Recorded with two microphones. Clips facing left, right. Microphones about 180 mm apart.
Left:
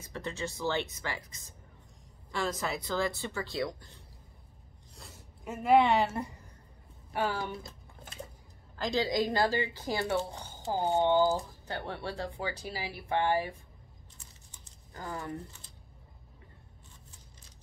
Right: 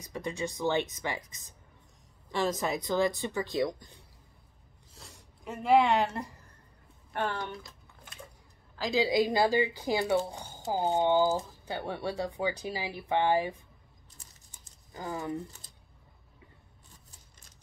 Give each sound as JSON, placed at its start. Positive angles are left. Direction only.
{"t": 0.0, "sound": "speech", "side_deg": -15}
{"t": 4.9, "sound": "speech", "side_deg": 0}
{"t": 8.7, "sound": "speech", "side_deg": -5}
{"t": 15.0, "sound": "speech", "side_deg": -15}